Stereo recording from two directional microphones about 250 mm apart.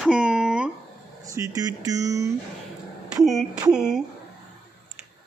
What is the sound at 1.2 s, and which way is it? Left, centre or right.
Speech, centre.